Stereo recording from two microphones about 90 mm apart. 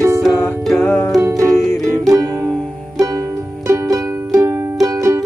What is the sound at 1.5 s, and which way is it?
Music, centre (ahead or behind).